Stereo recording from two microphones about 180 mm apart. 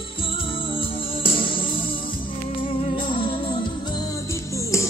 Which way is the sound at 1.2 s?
30° left (ahead or behind).